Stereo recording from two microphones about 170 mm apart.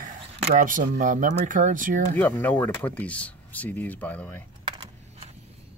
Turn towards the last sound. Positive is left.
turn(degrees=10)  # may be behind; listen again after turning